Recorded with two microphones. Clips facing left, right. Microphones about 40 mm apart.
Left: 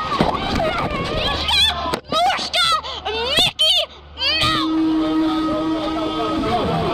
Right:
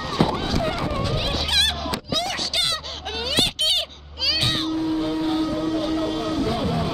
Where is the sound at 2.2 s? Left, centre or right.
Left.